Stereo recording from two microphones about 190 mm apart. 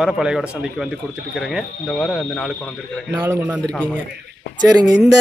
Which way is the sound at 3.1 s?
10° right (ahead or behind).